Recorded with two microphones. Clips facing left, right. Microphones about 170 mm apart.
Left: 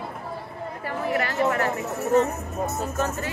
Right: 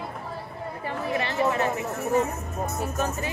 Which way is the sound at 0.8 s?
20° right (ahead or behind).